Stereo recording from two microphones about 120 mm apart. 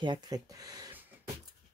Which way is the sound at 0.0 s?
35° right (ahead or behind).